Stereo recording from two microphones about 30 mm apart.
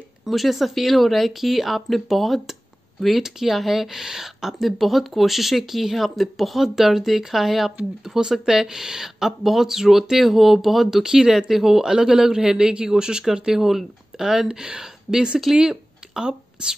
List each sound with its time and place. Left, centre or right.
0.2 s speech: centre
3.2 s speech: centre
4.6 s speech: centre
8.2 s speech: centre
10.9 s a man's voice: centre
15.5 s a sound: right